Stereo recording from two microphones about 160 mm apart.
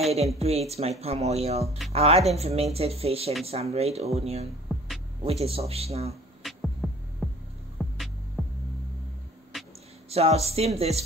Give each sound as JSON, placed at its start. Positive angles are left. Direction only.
{"t": 0.4, "sound": "speech", "side_deg": -40}
{"t": 4.6, "sound": "music", "side_deg": 0}
{"t": 5.2, "sound": "speech", "side_deg": -35}
{"t": 6.4, "sound": "music", "side_deg": 0}
{"t": 8.4, "sound": "hum", "side_deg": -5}
{"t": 10.0, "sound": "speech", "side_deg": -40}